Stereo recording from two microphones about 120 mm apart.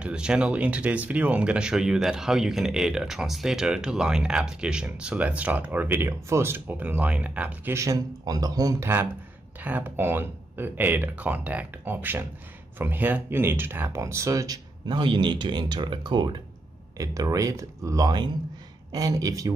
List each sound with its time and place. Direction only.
0.0 s speech: 5° right (ahead or behind)
7.7 s speech: 25° right (ahead or behind)